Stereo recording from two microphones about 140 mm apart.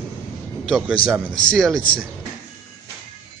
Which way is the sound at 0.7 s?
Centre (ahead or behind).